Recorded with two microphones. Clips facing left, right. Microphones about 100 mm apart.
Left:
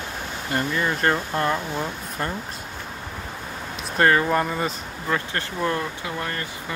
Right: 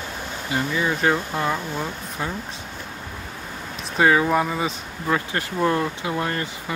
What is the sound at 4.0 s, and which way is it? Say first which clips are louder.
Speech: right 1 dB; 10° right (ahead or behind).